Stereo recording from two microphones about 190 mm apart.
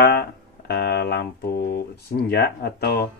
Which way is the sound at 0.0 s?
60° left (ahead or behind).